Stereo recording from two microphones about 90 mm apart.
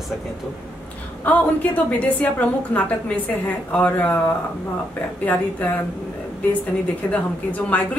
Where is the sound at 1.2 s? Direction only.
15° left (ahead or behind).